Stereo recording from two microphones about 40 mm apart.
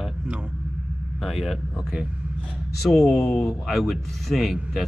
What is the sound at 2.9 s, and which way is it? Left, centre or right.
A man's voice, centre.